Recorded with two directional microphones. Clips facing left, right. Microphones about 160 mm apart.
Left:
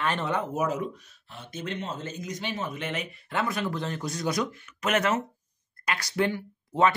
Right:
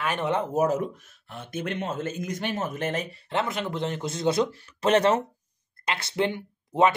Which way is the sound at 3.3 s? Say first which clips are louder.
Even; 25° right (ahead or behind).